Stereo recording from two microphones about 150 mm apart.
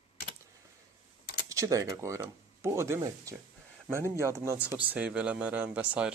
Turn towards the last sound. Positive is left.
turn(degrees=-10)  # may be behind; listen again after turning